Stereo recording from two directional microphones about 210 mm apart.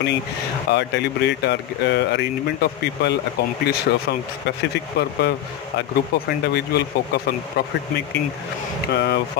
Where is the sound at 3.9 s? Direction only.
50° left (ahead or behind).